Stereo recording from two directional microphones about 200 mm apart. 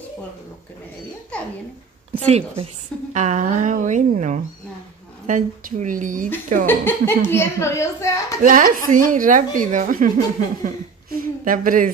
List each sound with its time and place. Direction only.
2.1 s speech: 30° right (ahead or behind)
6.6 s a woman's voice: 10° left (ahead or behind)
8.4 s speech: 40° right (ahead or behind)